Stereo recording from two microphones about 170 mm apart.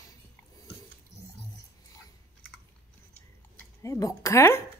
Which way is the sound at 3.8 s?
20° left (ahead or behind).